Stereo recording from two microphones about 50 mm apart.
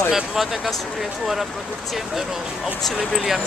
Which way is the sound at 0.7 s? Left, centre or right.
Centre.